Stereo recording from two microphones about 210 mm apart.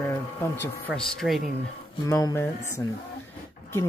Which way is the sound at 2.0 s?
15° left (ahead or behind).